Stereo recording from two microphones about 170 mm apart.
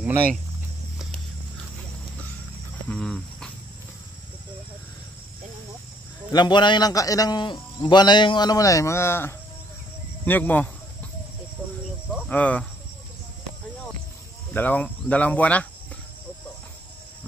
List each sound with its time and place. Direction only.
2.9 s a sound: 5° left (ahead or behind)
6.3 s a man's voice: 25° left (ahead or behind); by 10.7 s 10° left (ahead or behind)
12.3 s speech: 5° left (ahead or behind)
14.5 s speech: 10° left (ahead or behind)